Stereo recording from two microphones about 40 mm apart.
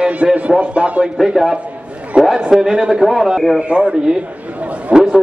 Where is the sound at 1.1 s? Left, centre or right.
Centre.